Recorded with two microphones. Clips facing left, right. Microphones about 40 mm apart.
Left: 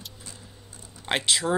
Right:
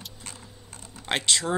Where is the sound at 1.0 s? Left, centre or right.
Centre.